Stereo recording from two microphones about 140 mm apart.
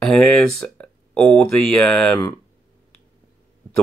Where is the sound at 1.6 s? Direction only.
5° left (ahead or behind).